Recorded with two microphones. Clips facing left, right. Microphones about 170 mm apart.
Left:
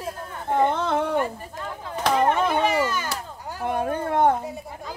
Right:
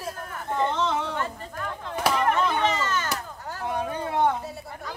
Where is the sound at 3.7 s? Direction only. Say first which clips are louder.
Left 4 dB; 50° left (ahead or behind).